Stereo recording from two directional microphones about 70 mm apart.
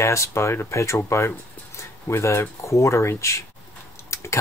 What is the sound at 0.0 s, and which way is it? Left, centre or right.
Speech, left.